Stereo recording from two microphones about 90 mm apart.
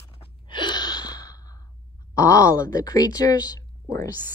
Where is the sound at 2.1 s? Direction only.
35° left (ahead or behind).